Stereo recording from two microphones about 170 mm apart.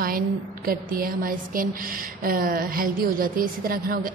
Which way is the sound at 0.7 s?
60° right (ahead or behind).